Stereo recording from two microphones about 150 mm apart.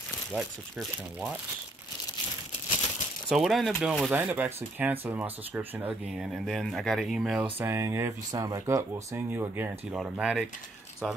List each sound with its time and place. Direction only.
0.3 s speech: centre (ahead or behind)
3.3 s speech: centre (ahead or behind)
7.5 s speech: 15° right (ahead or behind)
9.9 s speech: 5° right (ahead or behind)